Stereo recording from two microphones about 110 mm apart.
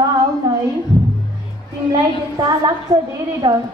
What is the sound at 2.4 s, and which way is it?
Speech, 35° right (ahead or behind).